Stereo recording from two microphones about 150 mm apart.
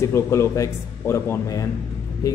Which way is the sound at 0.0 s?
20° left (ahead or behind).